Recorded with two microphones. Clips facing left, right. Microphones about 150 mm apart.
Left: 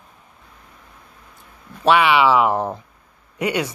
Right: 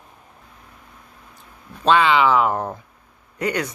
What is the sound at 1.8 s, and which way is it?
Speech, 15° left (ahead or behind).